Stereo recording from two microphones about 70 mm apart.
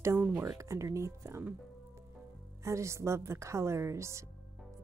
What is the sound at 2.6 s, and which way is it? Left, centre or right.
A woman's voice, right.